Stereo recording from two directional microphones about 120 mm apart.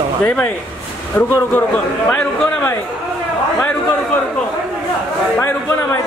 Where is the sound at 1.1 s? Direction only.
15° left (ahead or behind).